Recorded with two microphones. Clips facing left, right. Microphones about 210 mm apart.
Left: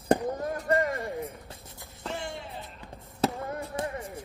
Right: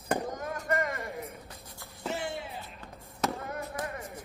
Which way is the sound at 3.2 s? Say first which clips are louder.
Left 4 dB; 30° left (ahead or behind).